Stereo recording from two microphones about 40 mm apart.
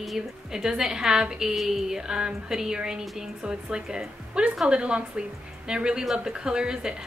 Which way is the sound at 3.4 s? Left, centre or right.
Centre.